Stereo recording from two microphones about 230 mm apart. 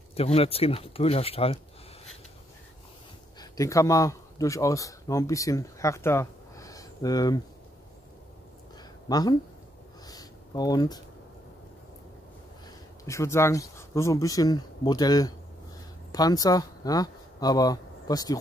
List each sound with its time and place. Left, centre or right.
0.1 s speech: left
3.3 s speech: centre
9.1 s speech: centre
10.0 s a sound: centre
13.0 s speech: centre